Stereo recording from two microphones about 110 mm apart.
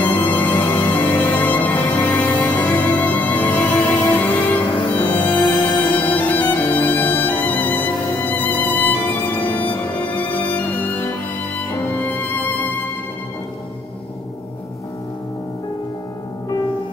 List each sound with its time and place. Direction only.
0.0 s music: 15° left (ahead or behind)